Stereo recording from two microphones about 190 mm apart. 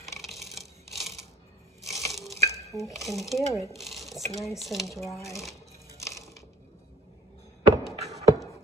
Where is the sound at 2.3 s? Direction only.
15° left (ahead or behind).